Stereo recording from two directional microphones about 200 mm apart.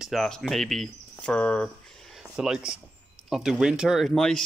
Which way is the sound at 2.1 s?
5° right (ahead or behind).